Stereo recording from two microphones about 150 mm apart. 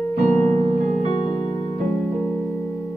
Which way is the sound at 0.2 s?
50° right (ahead or behind).